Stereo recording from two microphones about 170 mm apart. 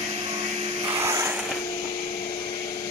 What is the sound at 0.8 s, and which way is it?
Vehicle, 20° right (ahead or behind).